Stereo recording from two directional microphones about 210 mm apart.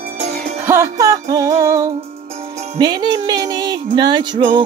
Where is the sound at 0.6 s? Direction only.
15° right (ahead or behind).